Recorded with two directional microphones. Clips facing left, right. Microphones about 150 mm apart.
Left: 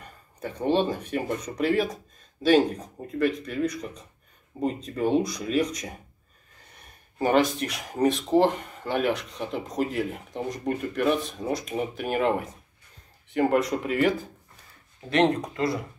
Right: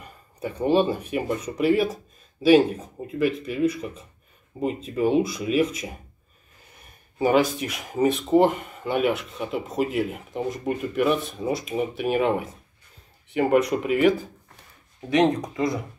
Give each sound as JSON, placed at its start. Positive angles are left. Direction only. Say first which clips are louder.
{"t": 0.0, "sound": "speech", "louder": "right 4 dB", "side_deg": -10}
{"t": 7.2, "sound": "speech", "louder": "right 2 dB", "side_deg": -5}